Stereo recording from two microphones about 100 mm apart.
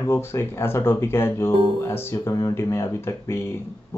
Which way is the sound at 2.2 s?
35° left (ahead or behind).